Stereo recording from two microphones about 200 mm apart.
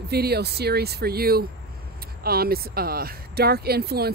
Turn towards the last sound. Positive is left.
turn(degrees=-50)  # may be behind; listen again after turning